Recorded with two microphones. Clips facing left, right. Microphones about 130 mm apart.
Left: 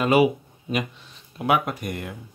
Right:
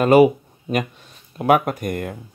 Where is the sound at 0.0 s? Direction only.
45° right (ahead or behind).